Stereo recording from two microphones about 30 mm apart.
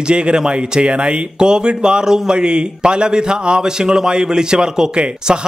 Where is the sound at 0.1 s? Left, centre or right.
Right.